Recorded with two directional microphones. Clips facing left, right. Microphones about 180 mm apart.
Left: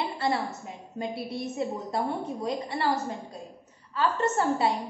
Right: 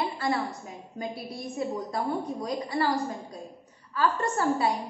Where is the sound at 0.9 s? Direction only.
25° left (ahead or behind).